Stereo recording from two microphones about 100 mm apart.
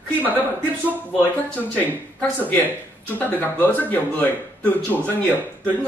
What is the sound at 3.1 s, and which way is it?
Speech, 20° left (ahead or behind).